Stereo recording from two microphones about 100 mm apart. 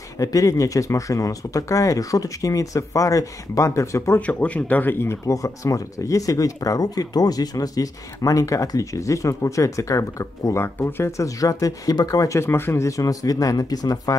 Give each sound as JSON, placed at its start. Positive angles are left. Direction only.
{"t": 0.2, "sound": "speech", "side_deg": 35}
{"t": 4.3, "sound": "speech", "side_deg": 15}